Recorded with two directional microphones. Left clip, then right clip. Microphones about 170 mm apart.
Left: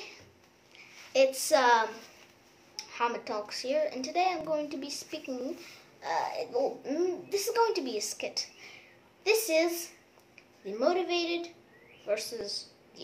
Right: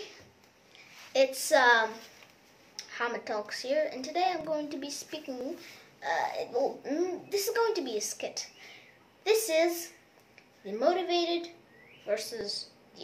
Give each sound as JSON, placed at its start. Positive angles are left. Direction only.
{"t": 0.7, "sound": "a woman's voice", "side_deg": 10}